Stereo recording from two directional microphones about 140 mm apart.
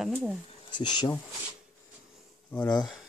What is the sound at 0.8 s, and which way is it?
Speech, 30° left (ahead or behind).